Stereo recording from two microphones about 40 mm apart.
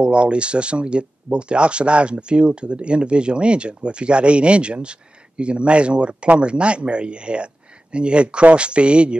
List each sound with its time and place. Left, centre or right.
0.0 s speech: right